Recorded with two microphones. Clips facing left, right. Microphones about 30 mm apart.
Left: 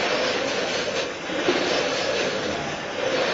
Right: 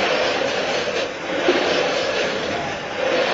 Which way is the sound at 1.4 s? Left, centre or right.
Centre.